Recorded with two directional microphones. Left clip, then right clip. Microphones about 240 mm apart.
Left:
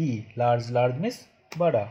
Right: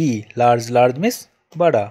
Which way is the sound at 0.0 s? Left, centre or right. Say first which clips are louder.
Right 10 dB; right.